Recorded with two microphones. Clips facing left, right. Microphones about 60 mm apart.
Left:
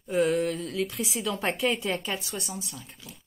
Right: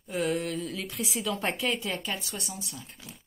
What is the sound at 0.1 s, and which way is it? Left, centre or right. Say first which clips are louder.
A woman's voice: left 5 dB; centre.